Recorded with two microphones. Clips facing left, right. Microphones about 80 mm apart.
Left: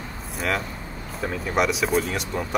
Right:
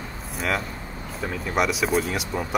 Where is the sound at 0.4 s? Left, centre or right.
Centre.